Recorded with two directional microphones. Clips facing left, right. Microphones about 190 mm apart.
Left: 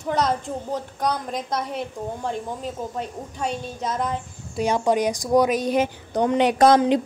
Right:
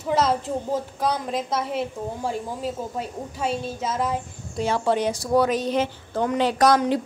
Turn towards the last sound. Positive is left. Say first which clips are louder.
# left 3 dB
turn(degrees=20)  # may be behind; listen again after turning